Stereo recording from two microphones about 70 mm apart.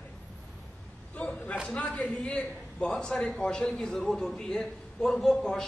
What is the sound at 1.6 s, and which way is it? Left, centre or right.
A man's voice, centre.